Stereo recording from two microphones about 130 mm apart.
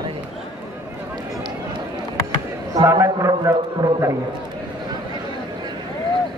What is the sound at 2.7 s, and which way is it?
A man's voice, 25° right (ahead or behind).